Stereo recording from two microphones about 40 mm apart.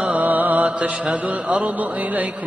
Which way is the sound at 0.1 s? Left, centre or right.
Right.